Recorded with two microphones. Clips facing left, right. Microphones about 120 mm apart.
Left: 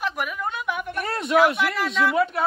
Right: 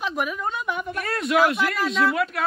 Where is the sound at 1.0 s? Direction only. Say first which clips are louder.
Right 1 dB; 25° left (ahead or behind).